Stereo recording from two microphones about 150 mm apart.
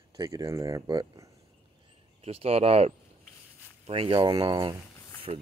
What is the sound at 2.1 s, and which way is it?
Speech, 40° right (ahead or behind).